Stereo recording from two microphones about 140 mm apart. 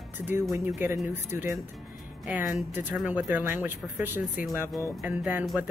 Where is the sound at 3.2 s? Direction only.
15° right (ahead or behind).